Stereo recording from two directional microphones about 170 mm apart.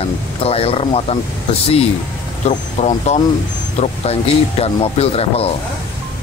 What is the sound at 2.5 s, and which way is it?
Speech, 40° left (ahead or behind).